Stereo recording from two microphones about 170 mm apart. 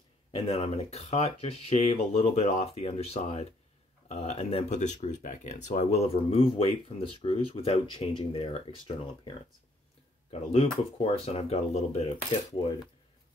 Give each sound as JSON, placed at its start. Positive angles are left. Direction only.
{"t": 0.3, "sound": "speech", "side_deg": 35}